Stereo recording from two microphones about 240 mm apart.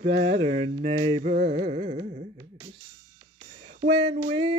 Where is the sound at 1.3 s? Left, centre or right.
Right.